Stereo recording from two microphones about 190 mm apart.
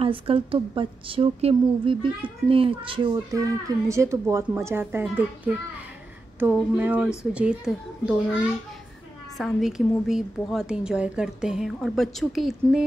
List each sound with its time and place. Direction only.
0.0 s a woman's voice: 30° right (ahead or behind); by 8.1 s 5° right (ahead or behind)
9.4 s a woman's voice: centre (ahead or behind)